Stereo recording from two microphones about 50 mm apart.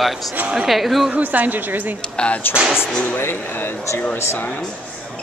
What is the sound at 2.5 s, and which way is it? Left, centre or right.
Speech, left.